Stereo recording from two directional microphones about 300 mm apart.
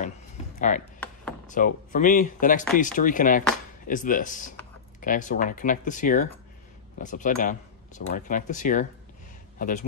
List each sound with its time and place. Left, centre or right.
0.6 s speech: left
0.9 s chop: centre
1.5 s a man's voice: left